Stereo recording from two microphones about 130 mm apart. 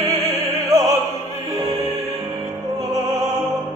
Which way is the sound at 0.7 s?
25° right (ahead or behind).